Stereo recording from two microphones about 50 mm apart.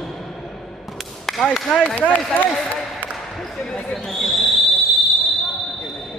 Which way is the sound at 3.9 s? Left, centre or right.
Centre.